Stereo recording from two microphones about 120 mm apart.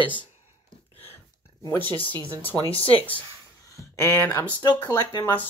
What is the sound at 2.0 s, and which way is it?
Speech, 15° left (ahead or behind).